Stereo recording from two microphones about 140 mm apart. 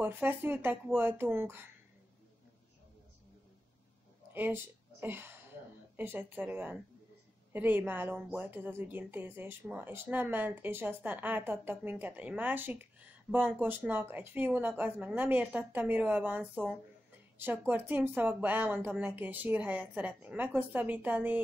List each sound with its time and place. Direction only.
0.0 s speech: 15° right (ahead or behind)
4.3 s speech: 15° right (ahead or behind)